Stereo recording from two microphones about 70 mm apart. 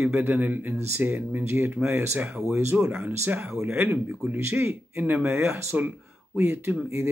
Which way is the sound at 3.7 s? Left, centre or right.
Right.